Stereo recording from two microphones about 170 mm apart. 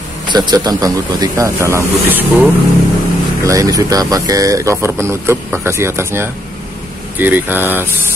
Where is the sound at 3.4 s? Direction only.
20° right (ahead or behind).